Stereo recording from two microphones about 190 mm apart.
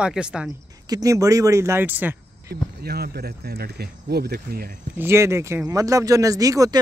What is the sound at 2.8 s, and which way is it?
Speech, 55° right (ahead or behind).